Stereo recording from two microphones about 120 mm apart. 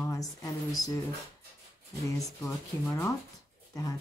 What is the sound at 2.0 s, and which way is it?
Speech, 25° left (ahead or behind).